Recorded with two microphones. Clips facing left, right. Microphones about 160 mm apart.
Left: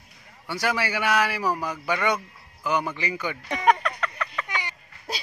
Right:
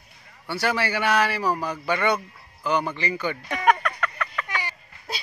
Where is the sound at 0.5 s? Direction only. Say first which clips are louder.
Right 2 dB; 10° left (ahead or behind).